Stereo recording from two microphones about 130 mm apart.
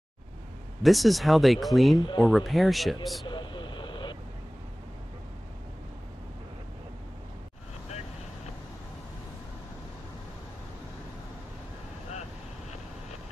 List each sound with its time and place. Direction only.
0.8 s speech: centre (ahead or behind)
2.0 s speech: 35° left (ahead or behind)
2.2 s speech: 5° right (ahead or behind)
3.3 s vehicle: 40° left (ahead or behind)